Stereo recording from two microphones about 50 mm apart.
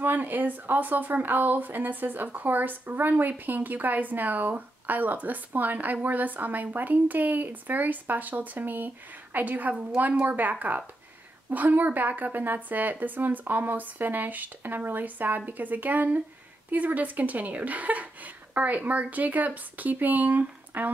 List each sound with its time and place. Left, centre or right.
0.0 s speech: right